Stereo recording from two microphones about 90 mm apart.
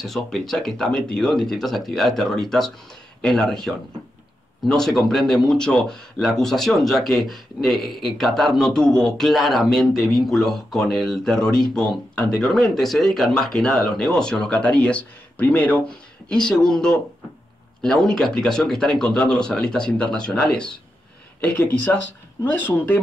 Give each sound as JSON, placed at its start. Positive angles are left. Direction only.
{"t": 0.0, "sound": "speech", "side_deg": 5}
{"t": 21.4, "sound": "speech", "side_deg": 20}